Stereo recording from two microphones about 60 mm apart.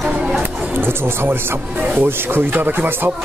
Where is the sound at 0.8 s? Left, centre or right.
Right.